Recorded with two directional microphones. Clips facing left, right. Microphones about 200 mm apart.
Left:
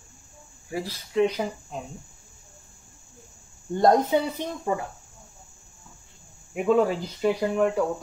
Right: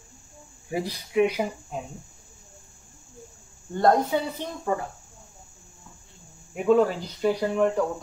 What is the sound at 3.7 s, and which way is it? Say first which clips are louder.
Speech: left 2 dB; 15° left (ahead or behind).